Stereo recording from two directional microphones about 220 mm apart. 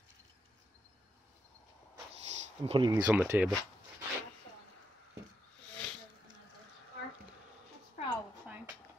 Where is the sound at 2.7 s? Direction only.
20° right (ahead or behind).